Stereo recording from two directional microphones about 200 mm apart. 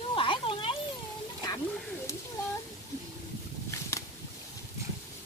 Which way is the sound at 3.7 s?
15° left (ahead or behind).